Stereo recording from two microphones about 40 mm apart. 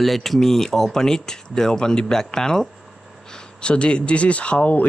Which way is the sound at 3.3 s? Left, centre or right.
Left.